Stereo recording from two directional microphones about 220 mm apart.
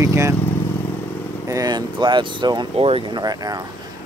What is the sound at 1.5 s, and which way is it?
Speech, 15° right (ahead or behind).